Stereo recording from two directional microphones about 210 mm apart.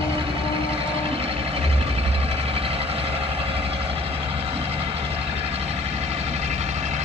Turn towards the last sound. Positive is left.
turn(degrees=-30)  # may be behind; listen again after turning